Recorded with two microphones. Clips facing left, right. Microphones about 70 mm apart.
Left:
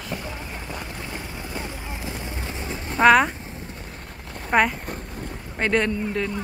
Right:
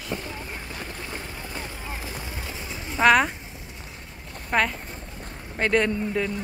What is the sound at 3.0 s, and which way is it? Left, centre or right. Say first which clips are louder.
Speech: left 3 dB; centre.